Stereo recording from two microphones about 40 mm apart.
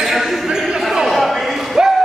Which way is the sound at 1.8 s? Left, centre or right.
Right.